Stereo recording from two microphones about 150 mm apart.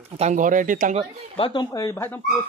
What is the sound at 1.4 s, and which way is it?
Speech, 30° left (ahead or behind).